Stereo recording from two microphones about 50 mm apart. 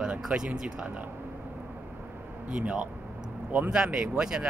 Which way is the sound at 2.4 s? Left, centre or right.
Right.